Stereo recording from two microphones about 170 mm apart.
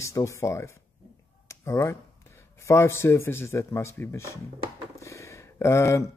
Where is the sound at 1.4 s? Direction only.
15° left (ahead or behind).